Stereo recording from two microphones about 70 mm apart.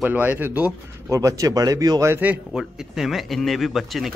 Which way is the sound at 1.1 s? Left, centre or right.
Right.